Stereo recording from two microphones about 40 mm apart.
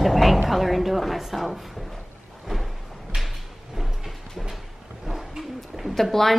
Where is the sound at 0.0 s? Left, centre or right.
Centre.